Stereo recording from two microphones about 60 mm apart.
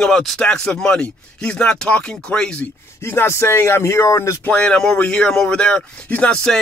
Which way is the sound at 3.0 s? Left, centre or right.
Left.